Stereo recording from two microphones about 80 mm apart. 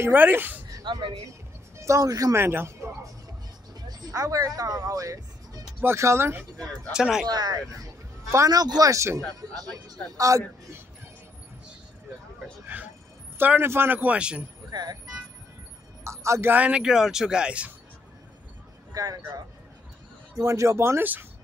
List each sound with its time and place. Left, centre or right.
0.0 s speech: right
0.9 s speech: right
1.8 s speech: right
2.3 s speech: right
3.9 s speech: right
5.8 s speech: right
6.9 s speech: centre
7.2 s speech: right
8.5 s speech: right
12.7 s speech: right
14.7 s speech: right
16.0 s music: right
16.5 s speech: centre
20.3 s speech: right